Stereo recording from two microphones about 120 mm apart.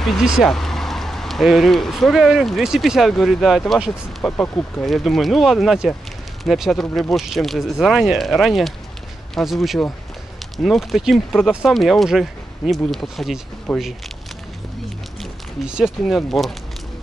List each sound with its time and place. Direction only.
0.2 s speech: 5° left (ahead or behind)
4.2 s speech: 20° left (ahead or behind)
4.8 s speech: centre (ahead or behind)
15.6 s speech: 5° right (ahead or behind)